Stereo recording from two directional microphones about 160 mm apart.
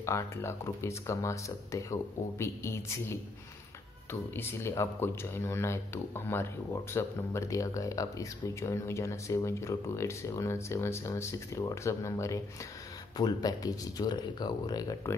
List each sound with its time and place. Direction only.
0.0 s speech: 15° left (ahead or behind)